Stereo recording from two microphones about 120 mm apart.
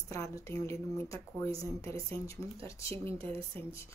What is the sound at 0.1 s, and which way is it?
Speech, 25° left (ahead or behind).